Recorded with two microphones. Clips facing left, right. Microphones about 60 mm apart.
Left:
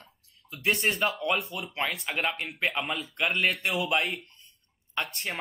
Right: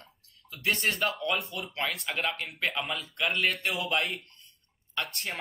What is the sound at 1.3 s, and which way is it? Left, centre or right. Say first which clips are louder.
A man's voice: left 2 dB; centre.